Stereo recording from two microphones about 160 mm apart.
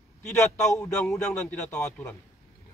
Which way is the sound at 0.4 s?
15° left (ahead or behind).